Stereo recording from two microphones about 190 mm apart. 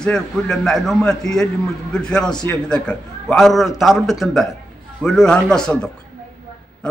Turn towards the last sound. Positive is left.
turn(degrees=5)  # may be behind; listen again after turning